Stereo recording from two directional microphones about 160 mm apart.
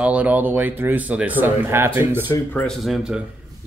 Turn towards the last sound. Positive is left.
turn(degrees=-5)  # may be behind; listen again after turning